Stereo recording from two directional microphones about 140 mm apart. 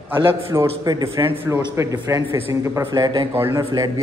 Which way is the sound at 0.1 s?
20° right (ahead or behind).